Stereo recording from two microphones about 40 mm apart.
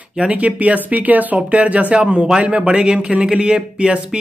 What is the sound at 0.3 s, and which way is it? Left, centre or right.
Speech, right.